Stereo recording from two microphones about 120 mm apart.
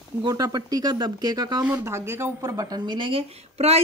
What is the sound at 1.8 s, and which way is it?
Speech, 20° right (ahead or behind).